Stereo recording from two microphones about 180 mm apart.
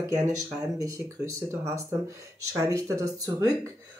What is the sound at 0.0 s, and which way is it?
Speech, 20° right (ahead or behind).